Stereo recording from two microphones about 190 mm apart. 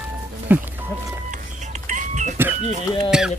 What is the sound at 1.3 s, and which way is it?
Music, 40° right (ahead or behind).